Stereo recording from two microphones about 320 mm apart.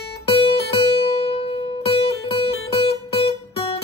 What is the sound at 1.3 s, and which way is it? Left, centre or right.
Music, centre.